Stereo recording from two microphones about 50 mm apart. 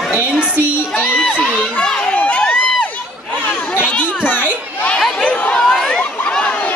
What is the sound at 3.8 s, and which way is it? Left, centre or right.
Children playing, left.